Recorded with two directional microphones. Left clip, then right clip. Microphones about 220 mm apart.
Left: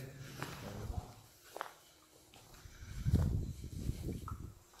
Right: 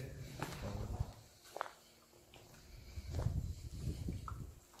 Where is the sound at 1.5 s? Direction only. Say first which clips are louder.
Right 1 dB; 20° left (ahead or behind).